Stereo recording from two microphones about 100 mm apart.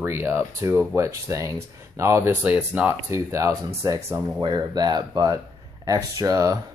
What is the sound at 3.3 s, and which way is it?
Speech, 30° right (ahead or behind).